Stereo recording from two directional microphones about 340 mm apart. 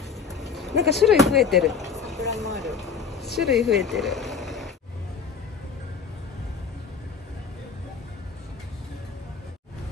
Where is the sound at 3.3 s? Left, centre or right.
Centre.